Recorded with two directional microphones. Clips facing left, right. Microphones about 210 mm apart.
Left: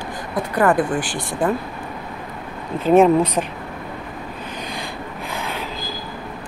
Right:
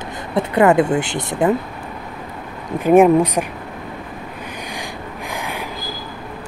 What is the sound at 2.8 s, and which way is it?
Speech, 15° right (ahead or behind).